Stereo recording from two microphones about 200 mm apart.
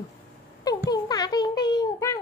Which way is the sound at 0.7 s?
20° left (ahead or behind).